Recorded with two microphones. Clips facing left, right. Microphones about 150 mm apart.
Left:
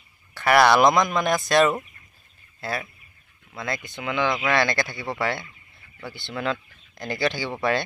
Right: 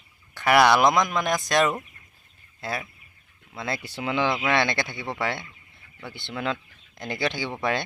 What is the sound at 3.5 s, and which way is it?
Speech, 30° right (ahead or behind).